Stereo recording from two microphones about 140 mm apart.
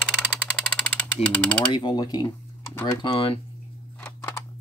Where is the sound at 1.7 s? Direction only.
30° left (ahead or behind).